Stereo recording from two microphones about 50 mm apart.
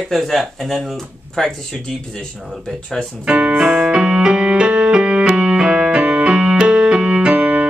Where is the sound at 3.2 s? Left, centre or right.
Centre.